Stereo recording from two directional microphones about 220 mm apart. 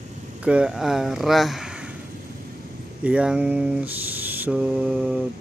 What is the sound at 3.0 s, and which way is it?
Mantra, 5° right (ahead or behind).